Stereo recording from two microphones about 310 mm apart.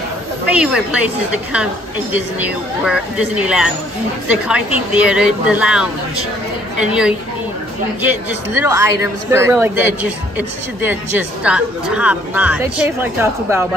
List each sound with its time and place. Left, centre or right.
0.5 s a woman's voice: centre
2.4 s a woman's voice: centre
6.9 s a woman's voice: centre